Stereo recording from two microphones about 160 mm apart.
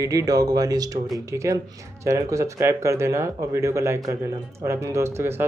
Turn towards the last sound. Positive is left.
turn(degrees=-15)  # may be behind; listen again after turning